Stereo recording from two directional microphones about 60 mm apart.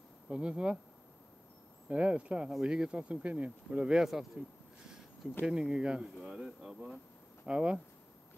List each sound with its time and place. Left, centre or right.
0.3 s speech: centre
1.9 s speech: right; by 4.3 s centre
4.8 s a sound: centre
5.5 s speech: centre
7.4 s speech: centre